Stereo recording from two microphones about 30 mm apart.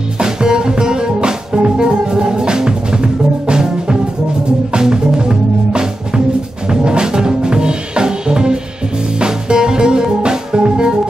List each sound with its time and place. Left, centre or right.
0.2 s music: right